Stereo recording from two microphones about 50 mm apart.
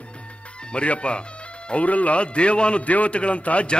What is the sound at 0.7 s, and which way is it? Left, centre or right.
A man's voice, left.